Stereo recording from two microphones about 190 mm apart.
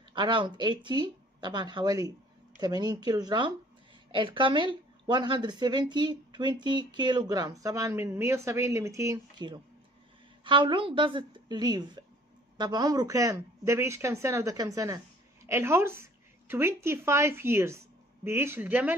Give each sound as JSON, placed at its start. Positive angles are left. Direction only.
{"t": 0.1, "sound": "a woman's voice", "side_deg": -25}